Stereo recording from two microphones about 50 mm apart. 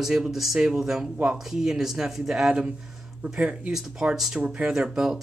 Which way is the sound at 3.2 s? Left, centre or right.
Right.